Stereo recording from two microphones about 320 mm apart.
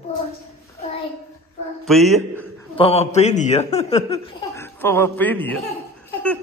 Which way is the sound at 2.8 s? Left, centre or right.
Centre.